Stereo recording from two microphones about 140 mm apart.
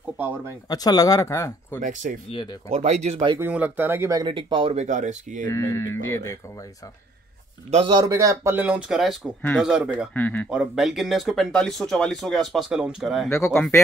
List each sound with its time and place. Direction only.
0.7 s speech: 30° left (ahead or behind)
1.8 s speech: 65° right (ahead or behind)
2.7 s speech: 50° right (ahead or behind)
3.3 s speech: 15° right (ahead or behind)
4.2 s speech: 35° right (ahead or behind)
4.8 s speech: 60° right (ahead or behind)
5.5 s speech: 20° left (ahead or behind)
7.7 s speech: 40° right (ahead or behind)
8.0 s speech: 25° right (ahead or behind)
8.5 s speech: 10° right (ahead or behind)
10.1 s speech: 10° left (ahead or behind)
10.5 s speech: 5° right (ahead or behind)